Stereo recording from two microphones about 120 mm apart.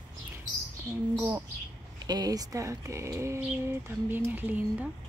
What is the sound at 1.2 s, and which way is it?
Speech, 15° right (ahead or behind).